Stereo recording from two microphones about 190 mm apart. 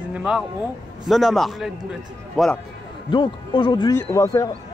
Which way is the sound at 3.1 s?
25° left (ahead or behind).